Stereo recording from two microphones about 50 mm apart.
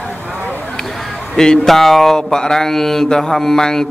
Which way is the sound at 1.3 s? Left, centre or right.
Centre.